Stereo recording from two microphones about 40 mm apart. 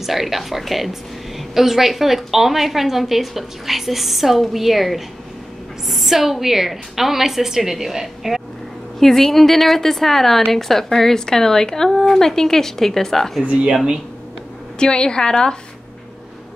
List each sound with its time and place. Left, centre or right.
0.0 s a woman's voice: centre
9.0 s speech: centre
13.4 s speech: right
14.8 s a woman's voice: left